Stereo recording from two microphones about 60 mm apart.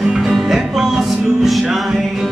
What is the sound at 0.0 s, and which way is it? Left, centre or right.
Music, centre.